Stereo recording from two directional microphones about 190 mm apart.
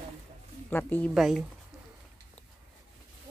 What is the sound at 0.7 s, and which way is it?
Speech, 10° left (ahead or behind).